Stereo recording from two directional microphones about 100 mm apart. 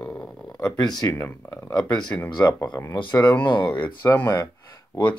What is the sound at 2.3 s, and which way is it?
Speech, 45° left (ahead or behind).